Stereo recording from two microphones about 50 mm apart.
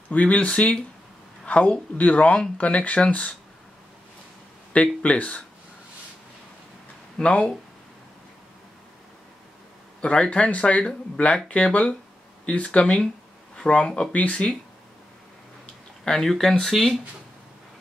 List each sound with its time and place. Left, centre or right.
0.1 s speech: left
5.0 s speech: left
7.2 s speech: left
10.3 s speech: left
10.8 s speech: centre
16.0 s speech: centre